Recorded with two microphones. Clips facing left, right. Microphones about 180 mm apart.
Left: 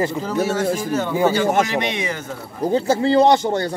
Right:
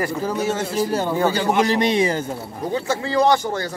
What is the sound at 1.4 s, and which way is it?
Speech, 45° left (ahead or behind).